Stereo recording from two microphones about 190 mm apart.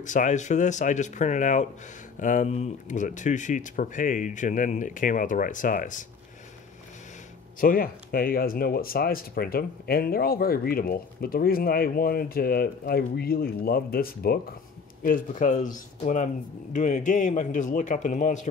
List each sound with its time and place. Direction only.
0.0 s a man's voice: 40° left (ahead or behind)
7.6 s speech: 50° left (ahead or behind)
16.7 s a man's voice: 40° left (ahead or behind)